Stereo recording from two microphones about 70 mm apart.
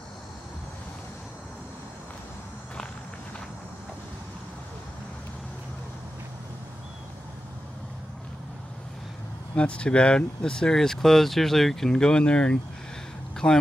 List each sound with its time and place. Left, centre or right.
9.6 s speech: centre